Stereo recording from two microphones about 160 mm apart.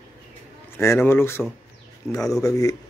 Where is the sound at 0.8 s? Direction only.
15° left (ahead or behind).